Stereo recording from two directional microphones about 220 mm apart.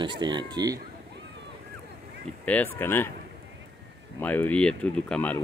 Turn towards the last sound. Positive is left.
turn(degrees=5)  # may be behind; listen again after turning